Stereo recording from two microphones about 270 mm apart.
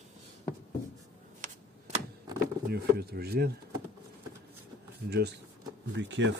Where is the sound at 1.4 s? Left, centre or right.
Right.